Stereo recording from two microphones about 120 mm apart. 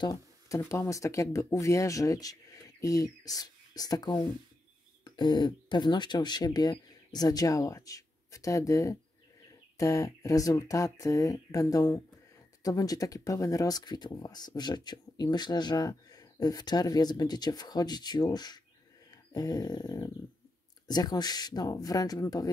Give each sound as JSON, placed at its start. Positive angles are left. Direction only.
{"t": 0.0, "sound": "speech", "side_deg": 30}
{"t": 19.0, "sound": "wild animals", "side_deg": 30}
{"t": 20.8, "sound": "speech", "side_deg": 35}